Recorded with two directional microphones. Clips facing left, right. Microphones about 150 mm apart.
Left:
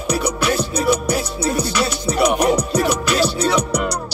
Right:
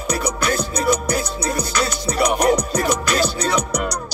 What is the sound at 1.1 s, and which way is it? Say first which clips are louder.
Music: left 2 dB; 30° left (ahead or behind).